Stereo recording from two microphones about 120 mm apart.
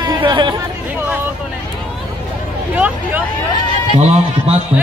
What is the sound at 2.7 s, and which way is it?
Speech, 15° right (ahead or behind).